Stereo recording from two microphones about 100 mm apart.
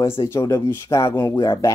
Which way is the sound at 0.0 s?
30° left (ahead or behind).